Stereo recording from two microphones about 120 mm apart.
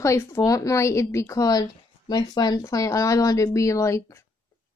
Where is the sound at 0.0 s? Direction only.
25° left (ahead or behind).